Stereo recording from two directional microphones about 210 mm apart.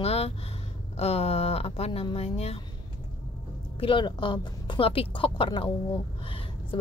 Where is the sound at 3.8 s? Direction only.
25° left (ahead or behind).